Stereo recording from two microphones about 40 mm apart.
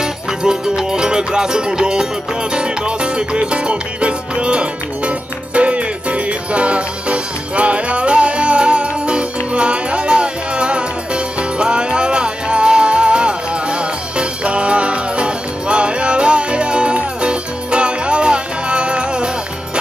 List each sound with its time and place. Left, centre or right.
0.0 s music: centre